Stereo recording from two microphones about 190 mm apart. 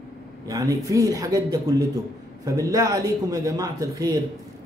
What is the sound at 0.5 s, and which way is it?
A man's voice, 20° right (ahead or behind).